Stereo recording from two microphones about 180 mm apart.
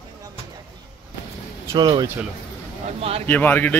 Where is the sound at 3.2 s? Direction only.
10° left (ahead or behind).